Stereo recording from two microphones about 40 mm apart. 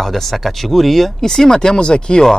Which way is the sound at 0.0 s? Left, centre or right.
Centre.